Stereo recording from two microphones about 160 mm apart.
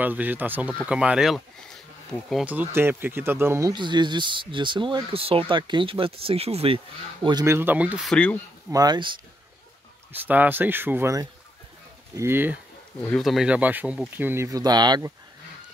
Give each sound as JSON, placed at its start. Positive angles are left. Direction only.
{"t": 0.0, "sound": "speech", "side_deg": -10}
{"t": 3.7, "sound": "speech", "side_deg": -30}
{"t": 7.4, "sound": "speech", "side_deg": -15}
{"t": 8.1, "sound": "speech", "side_deg": 5}
{"t": 8.6, "sound": "speech", "side_deg": -25}
{"t": 10.2, "sound": "speech", "side_deg": -10}
{"t": 13.0, "sound": "speech", "side_deg": 5}